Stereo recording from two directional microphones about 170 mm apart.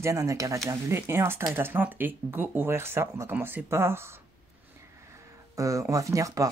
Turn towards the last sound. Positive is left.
turn(degrees=-20)  # may be behind; listen again after turning